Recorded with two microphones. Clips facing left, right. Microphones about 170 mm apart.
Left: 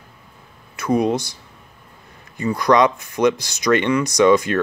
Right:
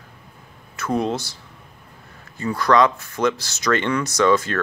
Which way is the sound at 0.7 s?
15° left (ahead or behind).